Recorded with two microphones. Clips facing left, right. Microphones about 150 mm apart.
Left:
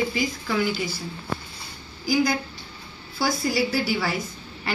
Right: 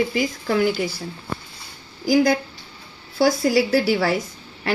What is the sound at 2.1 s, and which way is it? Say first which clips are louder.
Speech: right 5 dB; 75° right (ahead or behind).